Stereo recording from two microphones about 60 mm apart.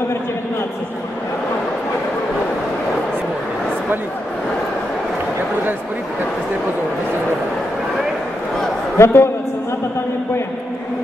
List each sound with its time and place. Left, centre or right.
8.9 s a man's voice: left